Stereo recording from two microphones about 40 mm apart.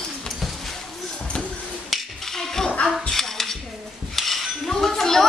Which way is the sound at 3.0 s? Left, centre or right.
Centre.